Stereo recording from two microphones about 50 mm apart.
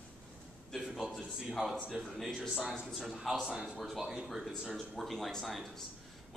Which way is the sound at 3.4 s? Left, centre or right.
Centre.